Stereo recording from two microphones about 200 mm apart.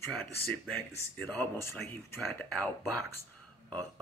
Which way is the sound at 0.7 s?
10° left (ahead or behind).